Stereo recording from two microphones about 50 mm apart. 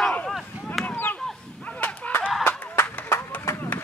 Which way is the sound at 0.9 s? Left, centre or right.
Left.